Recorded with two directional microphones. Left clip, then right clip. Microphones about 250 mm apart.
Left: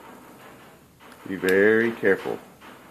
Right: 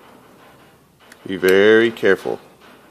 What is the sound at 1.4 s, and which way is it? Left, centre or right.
Speech, right.